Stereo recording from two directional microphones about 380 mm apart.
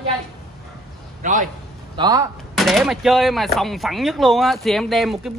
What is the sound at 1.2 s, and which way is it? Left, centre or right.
A man's voice, centre.